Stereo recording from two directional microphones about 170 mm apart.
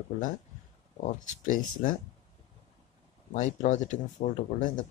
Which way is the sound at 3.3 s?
45° left (ahead or behind).